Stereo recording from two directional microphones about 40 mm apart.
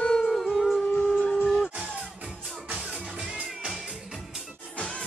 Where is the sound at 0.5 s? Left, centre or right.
Centre.